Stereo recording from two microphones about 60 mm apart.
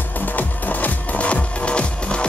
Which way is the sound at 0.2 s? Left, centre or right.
Left.